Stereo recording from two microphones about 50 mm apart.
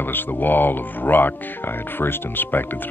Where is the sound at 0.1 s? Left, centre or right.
Left.